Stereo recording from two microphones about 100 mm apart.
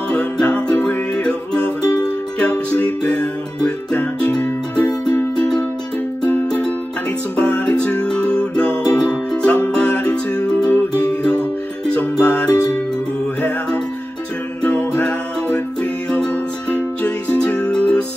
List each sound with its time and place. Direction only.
0.1 s music: 10° left (ahead or behind)